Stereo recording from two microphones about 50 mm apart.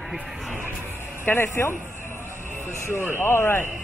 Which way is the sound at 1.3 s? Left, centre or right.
Left.